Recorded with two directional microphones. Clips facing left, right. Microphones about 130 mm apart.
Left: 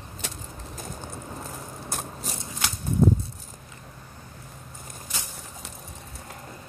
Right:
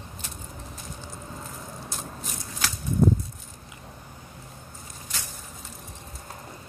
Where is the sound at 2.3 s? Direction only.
25° left (ahead or behind).